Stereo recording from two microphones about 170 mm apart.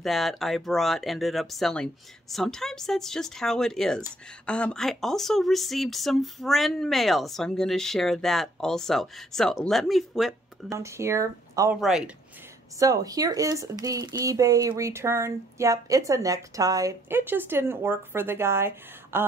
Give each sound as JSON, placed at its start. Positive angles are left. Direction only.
{"t": 0.0, "sound": "speech", "side_deg": 0}
{"t": 10.7, "sound": "speech", "side_deg": -15}
{"t": 12.7, "sound": "speech", "side_deg": -20}